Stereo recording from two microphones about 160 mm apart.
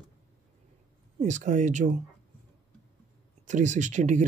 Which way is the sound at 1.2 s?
50° right (ahead or behind).